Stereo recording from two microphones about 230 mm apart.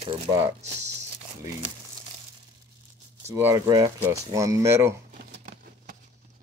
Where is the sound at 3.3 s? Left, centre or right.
Centre.